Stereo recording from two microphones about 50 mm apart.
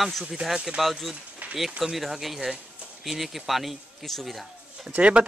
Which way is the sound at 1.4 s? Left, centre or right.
Right.